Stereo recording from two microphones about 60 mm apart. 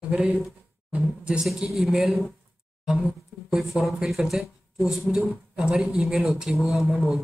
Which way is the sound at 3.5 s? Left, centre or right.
Centre.